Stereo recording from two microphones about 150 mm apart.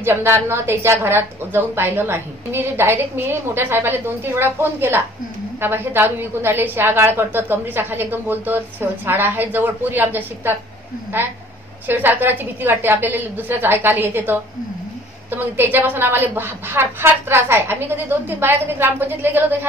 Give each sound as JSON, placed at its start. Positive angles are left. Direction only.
{"t": 0.0, "sound": "a woman's voice", "side_deg": -15}
{"t": 11.9, "sound": "a woman's voice", "side_deg": -15}